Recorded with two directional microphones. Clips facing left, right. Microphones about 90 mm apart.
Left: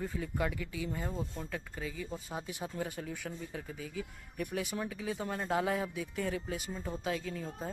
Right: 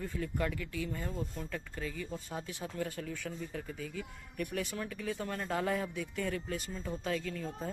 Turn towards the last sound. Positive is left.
turn(degrees=10)  # may be behind; listen again after turning